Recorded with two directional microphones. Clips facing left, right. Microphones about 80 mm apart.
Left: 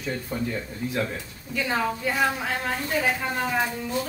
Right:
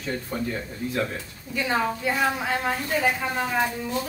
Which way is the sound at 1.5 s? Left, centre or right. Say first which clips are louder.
Right 1 dB; centre.